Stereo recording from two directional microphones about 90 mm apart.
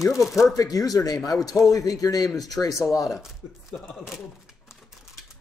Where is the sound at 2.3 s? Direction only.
Centre (ahead or behind).